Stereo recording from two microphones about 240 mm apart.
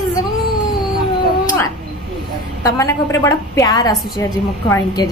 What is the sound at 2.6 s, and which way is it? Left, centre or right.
A woman's voice, centre.